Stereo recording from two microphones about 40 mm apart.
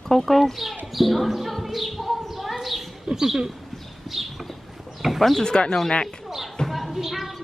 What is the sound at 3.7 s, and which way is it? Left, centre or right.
Horse, centre.